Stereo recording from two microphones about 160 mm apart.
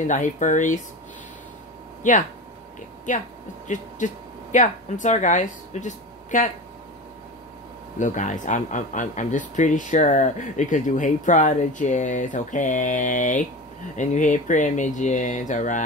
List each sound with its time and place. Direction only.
0.0 s speech: 50° left (ahead or behind)
2.0 s speech: 50° left (ahead or behind)
8.0 s speech: 50° left (ahead or behind)